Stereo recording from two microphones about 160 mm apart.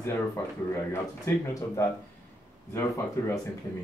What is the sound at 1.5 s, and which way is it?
Speech, 20° left (ahead or behind).